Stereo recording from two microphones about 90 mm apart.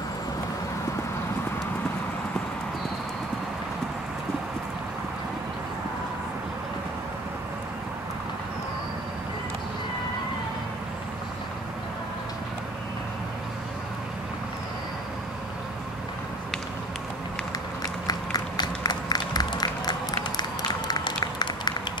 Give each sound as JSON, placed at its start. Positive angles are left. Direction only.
{"t": 18.0, "sound": "run", "side_deg": 45}